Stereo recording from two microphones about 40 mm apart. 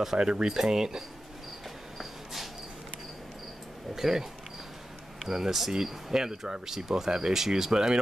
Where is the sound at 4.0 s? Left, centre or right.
Centre.